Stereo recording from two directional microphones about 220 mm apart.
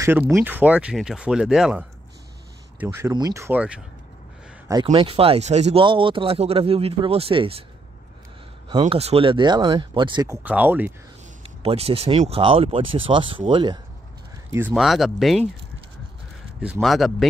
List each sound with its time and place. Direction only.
0.3 s speech: 10° right (ahead or behind)
4.8 s speech: 25° right (ahead or behind)
8.6 s speech: 25° right (ahead or behind); by 10.9 s 5° right (ahead or behind)
11.4 s speech: 25° right (ahead or behind)
14.5 s speech: 5° right (ahead or behind)
16.6 s speech: 5° right (ahead or behind)